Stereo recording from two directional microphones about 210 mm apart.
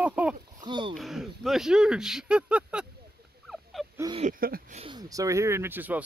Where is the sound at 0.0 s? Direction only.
5° right (ahead or behind).